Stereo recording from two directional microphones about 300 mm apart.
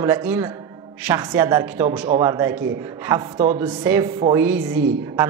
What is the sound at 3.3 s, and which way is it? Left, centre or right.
Speech, right.